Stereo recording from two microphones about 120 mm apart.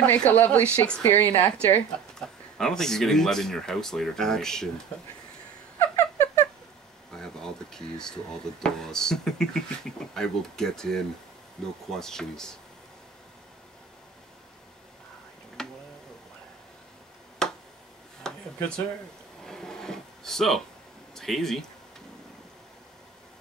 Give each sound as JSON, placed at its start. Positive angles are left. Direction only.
{"t": 0.3, "sound": "a woman's voice", "side_deg": 15}
{"t": 2.1, "sound": "a woman's voice", "side_deg": 5}
{"t": 5.8, "sound": "a sound", "side_deg": 20}
{"t": 7.2, "sound": "speech", "side_deg": 5}
{"t": 15.6, "sound": "tick-tock", "side_deg": 5}
{"t": 17.4, "sound": "finger snapping", "side_deg": 5}
{"t": 18.3, "sound": "a sound", "side_deg": 5}
{"t": 19.4, "sound": "a sound", "side_deg": 5}
{"t": 21.1, "sound": "speech", "side_deg": 5}